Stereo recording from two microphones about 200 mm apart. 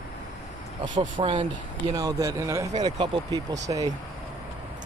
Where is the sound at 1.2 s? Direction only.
30° right (ahead or behind).